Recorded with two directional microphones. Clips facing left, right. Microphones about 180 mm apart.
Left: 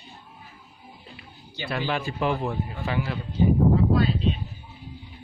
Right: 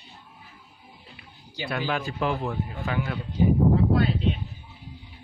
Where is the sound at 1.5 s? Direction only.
5° right (ahead or behind).